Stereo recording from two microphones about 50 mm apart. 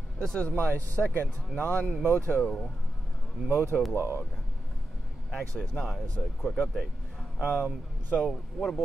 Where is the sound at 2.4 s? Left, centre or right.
Centre.